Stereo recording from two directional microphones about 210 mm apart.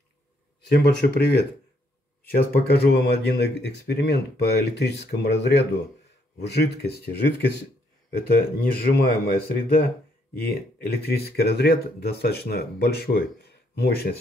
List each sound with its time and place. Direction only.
0.7 s speech: 50° left (ahead or behind)
2.5 s speech: 50° left (ahead or behind)
11.0 s speech: 50° left (ahead or behind)